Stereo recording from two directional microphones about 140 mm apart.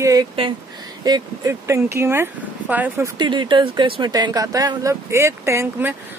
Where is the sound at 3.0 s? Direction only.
35° right (ahead or behind); by 6.0 s 15° right (ahead or behind).